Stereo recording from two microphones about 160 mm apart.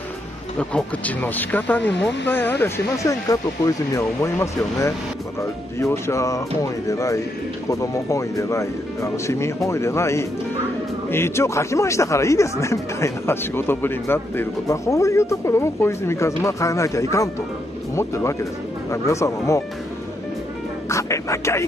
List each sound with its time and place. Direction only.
0.6 s speech: 10° left (ahead or behind)
20.9 s speech: 20° left (ahead or behind)